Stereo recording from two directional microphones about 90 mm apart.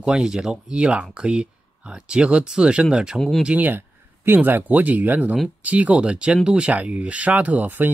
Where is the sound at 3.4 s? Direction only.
20° right (ahead or behind).